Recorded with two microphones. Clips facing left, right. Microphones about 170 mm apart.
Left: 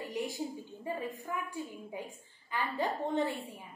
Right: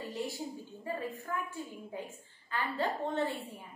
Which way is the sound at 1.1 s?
15° left (ahead or behind).